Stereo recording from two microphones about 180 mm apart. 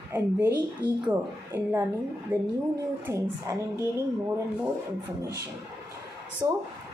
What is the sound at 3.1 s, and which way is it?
Speech, 15° right (ahead or behind).